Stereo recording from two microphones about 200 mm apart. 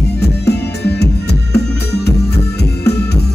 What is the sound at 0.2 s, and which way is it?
Music, 55° left (ahead or behind).